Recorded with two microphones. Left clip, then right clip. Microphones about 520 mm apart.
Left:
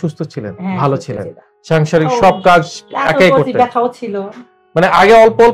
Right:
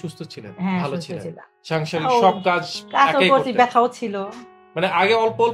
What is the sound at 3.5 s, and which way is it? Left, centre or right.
Speech, right.